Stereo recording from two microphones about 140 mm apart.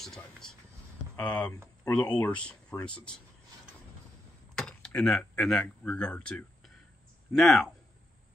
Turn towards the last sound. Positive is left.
turn(degrees=5)  # may be behind; listen again after turning